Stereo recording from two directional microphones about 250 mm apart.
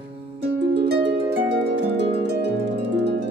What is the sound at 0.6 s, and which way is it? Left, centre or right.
Harp, right.